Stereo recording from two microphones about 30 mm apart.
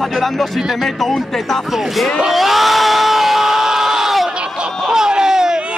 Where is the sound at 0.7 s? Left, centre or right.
Centre.